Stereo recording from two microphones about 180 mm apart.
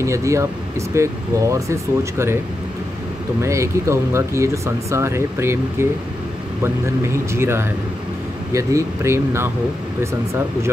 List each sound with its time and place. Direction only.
0.0 s speech: 15° right (ahead or behind)
3.4 s speech: 15° right (ahead or behind)